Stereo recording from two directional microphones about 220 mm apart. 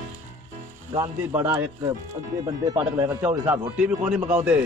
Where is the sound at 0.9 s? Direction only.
10° right (ahead or behind).